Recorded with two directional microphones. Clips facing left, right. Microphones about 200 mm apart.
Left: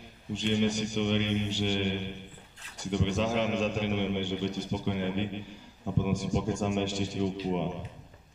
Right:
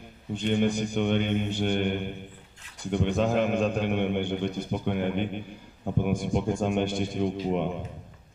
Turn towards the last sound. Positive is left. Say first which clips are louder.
# right 3 dB
turn(degrees=-55)  # may be behind; listen again after turning